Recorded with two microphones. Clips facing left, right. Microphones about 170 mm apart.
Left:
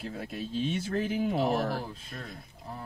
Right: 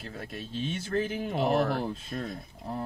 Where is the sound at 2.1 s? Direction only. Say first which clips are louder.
Right 8 dB; 35° right (ahead or behind).